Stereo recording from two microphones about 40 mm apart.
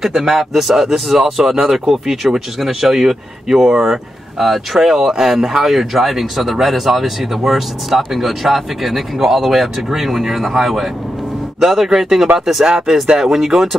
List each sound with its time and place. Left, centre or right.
0.0 s speech: centre
2.6 s speech: centre
4.4 s speech: centre